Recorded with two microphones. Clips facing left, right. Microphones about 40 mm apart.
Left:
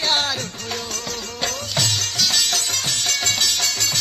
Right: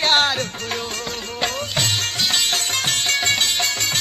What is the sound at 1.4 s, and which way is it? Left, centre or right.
Music, right.